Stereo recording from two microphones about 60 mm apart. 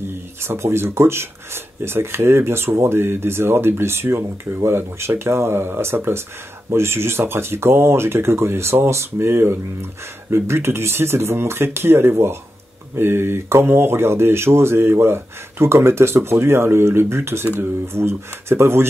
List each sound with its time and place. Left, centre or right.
0.4 s speech: right